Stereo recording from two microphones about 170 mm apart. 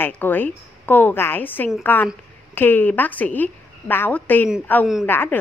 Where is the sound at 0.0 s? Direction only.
10° left (ahead or behind).